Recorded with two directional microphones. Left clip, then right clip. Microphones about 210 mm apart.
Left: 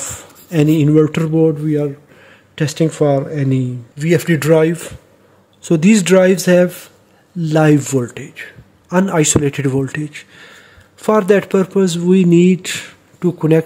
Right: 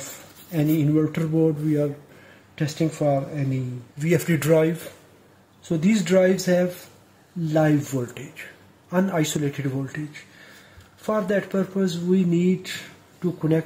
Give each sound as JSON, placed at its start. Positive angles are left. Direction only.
{"t": 0.5, "sound": "a man's voice", "side_deg": 55}
{"t": 2.5, "sound": "speech", "side_deg": 55}
{"t": 4.0, "sound": "speech", "side_deg": 40}
{"t": 5.6, "sound": "a man's voice", "side_deg": 55}